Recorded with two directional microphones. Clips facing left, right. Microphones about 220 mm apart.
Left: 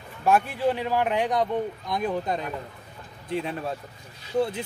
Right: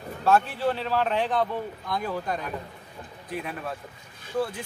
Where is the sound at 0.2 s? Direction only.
15° left (ahead or behind).